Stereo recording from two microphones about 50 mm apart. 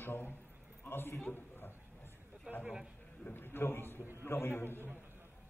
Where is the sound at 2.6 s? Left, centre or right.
Centre.